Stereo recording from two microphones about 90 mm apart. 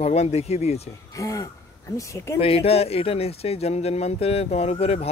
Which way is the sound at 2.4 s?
90° left.